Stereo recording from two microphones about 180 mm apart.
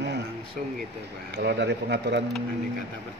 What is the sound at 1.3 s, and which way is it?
Speech, 70° right (ahead or behind).